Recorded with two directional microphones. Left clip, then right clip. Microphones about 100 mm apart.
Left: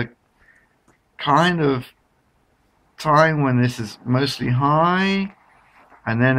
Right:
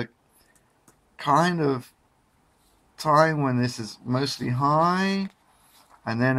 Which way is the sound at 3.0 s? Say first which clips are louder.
Left 4 dB; 40° right (ahead or behind).